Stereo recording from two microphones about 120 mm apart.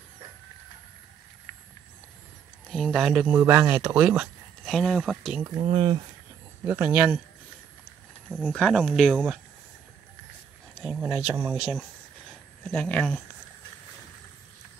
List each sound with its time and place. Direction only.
2.7 s speech: centre (ahead or behind)
4.6 s speech: 5° left (ahead or behind)
5.6 s speech: 50° right (ahead or behind)
6.6 s speech: 15° right (ahead or behind)
8.3 s speech: 5° right (ahead or behind)
10.7 s a sound: centre (ahead or behind)
11.1 s speech: 10° right (ahead or behind)
12.7 s speech: 10° left (ahead or behind)